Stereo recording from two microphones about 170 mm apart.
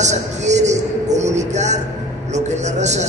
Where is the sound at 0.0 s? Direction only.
45° right (ahead or behind).